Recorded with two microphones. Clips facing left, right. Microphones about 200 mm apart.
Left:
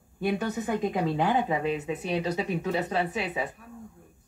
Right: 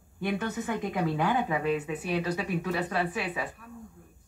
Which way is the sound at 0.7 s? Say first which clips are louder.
Left 3 dB; 25° left (ahead or behind).